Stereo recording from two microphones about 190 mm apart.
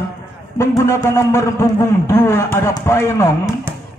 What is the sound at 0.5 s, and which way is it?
A man's voice, 15° left (ahead or behind).